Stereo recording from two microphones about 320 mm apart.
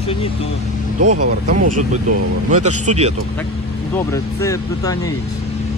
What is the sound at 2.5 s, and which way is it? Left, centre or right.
Speech, right.